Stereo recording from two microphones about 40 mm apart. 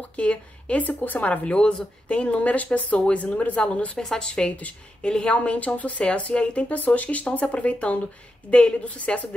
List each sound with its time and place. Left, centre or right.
0.1 s speech: left
0.8 s a woman's voice: left
1.2 s speech: left
3.9 s a woman's voice: centre
6.7 s a woman's voice: left